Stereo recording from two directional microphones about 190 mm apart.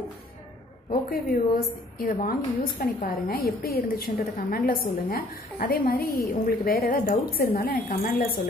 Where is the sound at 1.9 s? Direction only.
50° left (ahead or behind).